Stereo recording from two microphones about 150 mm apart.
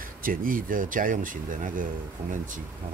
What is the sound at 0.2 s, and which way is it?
Speech, 70° right (ahead or behind).